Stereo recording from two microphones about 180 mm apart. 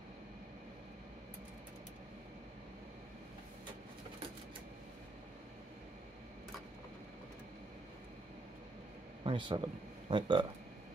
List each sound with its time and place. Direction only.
9.2 s speech: 25° right (ahead or behind)